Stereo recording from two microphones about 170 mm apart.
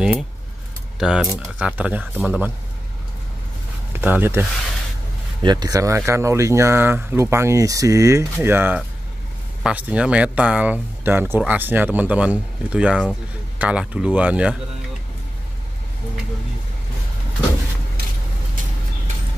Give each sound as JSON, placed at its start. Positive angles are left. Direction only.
{"t": 0.9, "sound": "speech", "side_deg": -5}
{"t": 3.9, "sound": "speech", "side_deg": -10}
{"t": 5.4, "sound": "speech", "side_deg": -25}